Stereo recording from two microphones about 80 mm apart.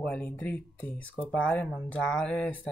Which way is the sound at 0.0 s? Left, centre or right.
Centre.